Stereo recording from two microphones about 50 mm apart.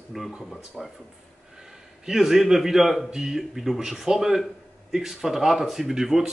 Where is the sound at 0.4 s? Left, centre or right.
Centre.